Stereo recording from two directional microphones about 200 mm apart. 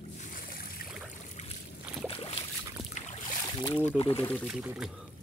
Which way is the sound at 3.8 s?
30° left (ahead or behind).